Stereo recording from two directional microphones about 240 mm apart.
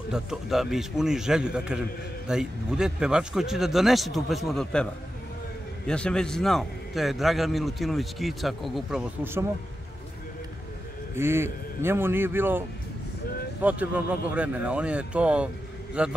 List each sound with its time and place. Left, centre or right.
0.1 s a man's voice: centre
5.9 s a man's voice: centre
11.1 s a man's voice: centre